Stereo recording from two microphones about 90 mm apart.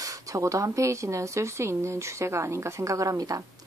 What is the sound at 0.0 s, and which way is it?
Speech, 40° right (ahead or behind).